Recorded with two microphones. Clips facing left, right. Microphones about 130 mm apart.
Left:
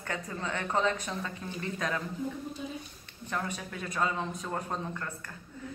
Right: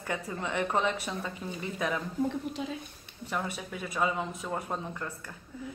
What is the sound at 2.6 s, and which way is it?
Speech, 90° right.